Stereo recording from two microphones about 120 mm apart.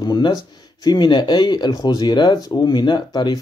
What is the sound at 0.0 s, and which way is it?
Speech, 35° left (ahead or behind).